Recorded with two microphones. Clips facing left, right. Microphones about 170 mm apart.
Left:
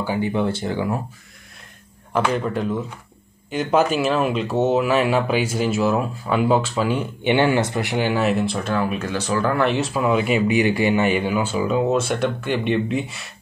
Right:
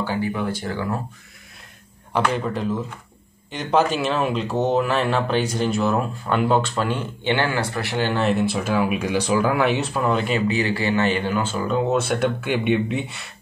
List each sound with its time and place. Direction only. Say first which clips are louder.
0.0 s speech: left 1 dB; 15° left (ahead or behind)
0.3 s speech: left 3 dB; 25° left (ahead or behind)
2.1 s speech: left 1 dB; centre (ahead or behind)